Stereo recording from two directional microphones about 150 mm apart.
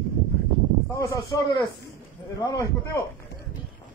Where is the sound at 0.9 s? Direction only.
20° left (ahead or behind).